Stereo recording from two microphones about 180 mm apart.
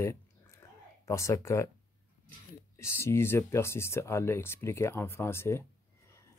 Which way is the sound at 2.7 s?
15° left (ahead or behind).